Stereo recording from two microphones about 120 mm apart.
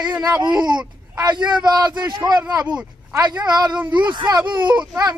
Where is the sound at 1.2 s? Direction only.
35° right (ahead or behind).